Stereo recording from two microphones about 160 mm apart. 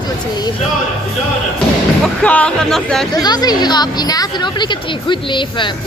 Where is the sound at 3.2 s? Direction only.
25° left (ahead or behind).